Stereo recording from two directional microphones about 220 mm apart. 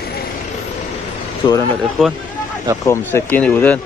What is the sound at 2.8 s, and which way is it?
Speech, 10° left (ahead or behind).